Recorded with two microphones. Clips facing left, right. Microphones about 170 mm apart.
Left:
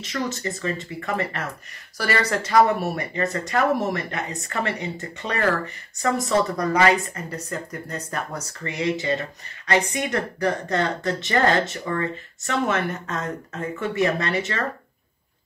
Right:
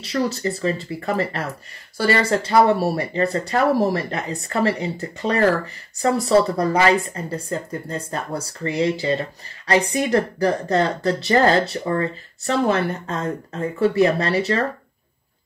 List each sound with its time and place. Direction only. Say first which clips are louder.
0.0 s speech: right 5 dB; 35° right (ahead or behind)